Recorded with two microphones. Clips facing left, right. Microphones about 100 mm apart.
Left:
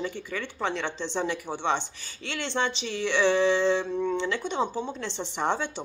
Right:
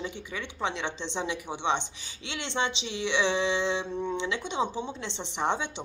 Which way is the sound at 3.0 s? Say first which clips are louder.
Left 4 dB; 20° right (ahead or behind).